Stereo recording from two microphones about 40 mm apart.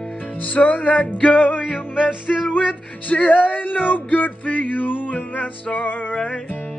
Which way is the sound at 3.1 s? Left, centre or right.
Left.